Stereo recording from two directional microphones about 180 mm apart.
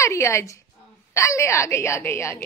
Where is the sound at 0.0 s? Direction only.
15° left (ahead or behind).